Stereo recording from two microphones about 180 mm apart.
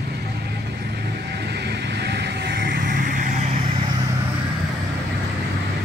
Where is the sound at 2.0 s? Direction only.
65° right (ahead or behind); by 3.4 s 45° right (ahead or behind).